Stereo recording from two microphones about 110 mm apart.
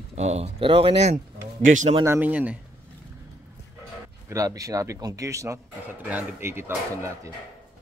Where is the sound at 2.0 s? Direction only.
15° right (ahead or behind).